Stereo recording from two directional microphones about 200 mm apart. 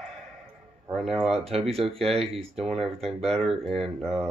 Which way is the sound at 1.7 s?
30° right (ahead or behind).